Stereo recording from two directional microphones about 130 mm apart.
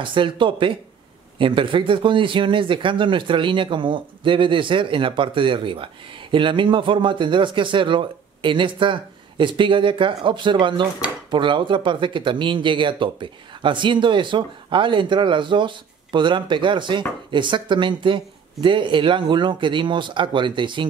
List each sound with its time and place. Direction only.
0.0 s speech: 40° right (ahead or behind)